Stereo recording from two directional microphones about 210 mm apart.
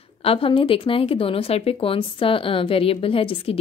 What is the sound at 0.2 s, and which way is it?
Speech, 25° left (ahead or behind).